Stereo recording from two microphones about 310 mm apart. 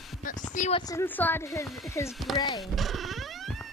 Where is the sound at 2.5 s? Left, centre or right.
Centre.